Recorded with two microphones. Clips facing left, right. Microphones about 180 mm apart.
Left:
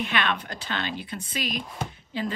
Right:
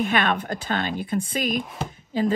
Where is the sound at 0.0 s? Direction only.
45° right (ahead or behind).